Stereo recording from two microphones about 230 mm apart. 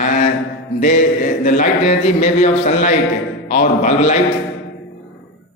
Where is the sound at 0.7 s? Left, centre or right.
Left.